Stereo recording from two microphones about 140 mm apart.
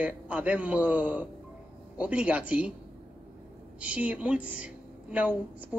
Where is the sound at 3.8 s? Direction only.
10° right (ahead or behind).